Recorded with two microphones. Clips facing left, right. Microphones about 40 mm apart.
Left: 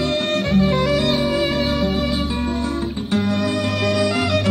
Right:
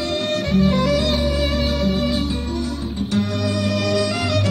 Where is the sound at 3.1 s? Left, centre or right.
Left.